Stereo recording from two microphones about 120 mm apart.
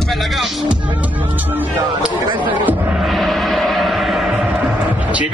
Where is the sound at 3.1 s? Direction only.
Centre (ahead or behind).